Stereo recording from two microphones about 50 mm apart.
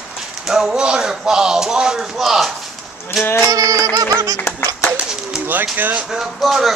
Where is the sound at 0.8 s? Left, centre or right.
Centre.